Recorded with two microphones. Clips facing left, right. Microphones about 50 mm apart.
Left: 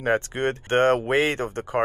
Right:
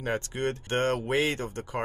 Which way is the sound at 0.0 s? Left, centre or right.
Left.